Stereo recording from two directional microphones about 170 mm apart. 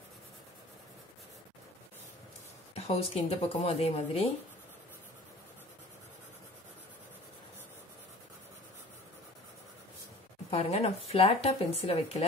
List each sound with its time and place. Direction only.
2.7 s speech: 35° left (ahead or behind)
10.5 s speech: 35° left (ahead or behind)